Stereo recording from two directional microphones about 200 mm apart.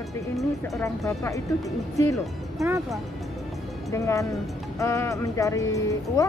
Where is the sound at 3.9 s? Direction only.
15° left (ahead or behind).